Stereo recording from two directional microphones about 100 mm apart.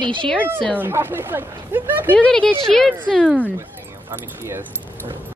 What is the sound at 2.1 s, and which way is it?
A woman's voice, 10° left (ahead or behind).